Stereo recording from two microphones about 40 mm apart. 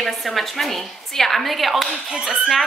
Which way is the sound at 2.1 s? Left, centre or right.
Centre.